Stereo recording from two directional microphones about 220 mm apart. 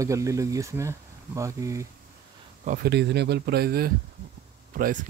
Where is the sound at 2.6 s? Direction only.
40° right (ahead or behind).